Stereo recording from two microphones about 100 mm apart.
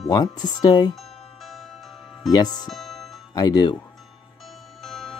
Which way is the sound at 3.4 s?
45° left (ahead or behind).